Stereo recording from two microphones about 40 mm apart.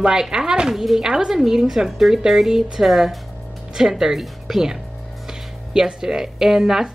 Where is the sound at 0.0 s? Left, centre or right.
Centre.